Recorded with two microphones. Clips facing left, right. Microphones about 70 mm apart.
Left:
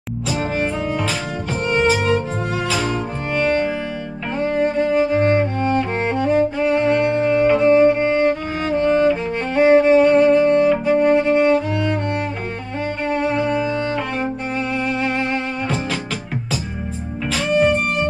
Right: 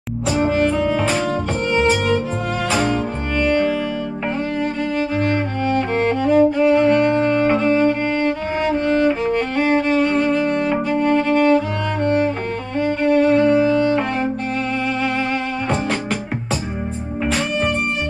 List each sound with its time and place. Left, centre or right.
1.8 s music: centre
3.3 s music: left
9.4 s music: centre
12.8 s music: centre
14.9 s music: centre